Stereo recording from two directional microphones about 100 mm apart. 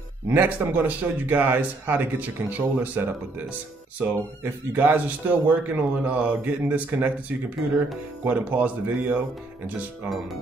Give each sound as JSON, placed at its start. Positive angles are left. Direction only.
{"t": 0.3, "sound": "speech", "side_deg": -20}
{"t": 8.2, "sound": "speech", "side_deg": -15}